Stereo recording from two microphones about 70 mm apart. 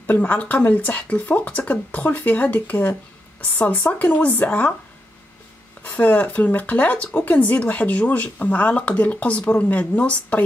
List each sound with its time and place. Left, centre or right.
0.0 s speech: left
5.9 s speech: left